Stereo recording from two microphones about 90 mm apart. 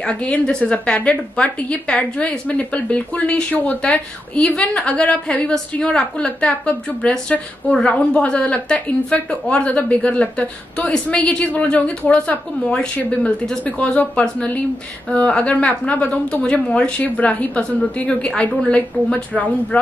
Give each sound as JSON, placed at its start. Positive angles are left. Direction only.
{"t": 0.0, "sound": "a woman's voice", "side_deg": 15}